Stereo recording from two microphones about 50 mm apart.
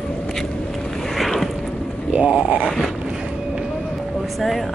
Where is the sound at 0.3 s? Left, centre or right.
Centre.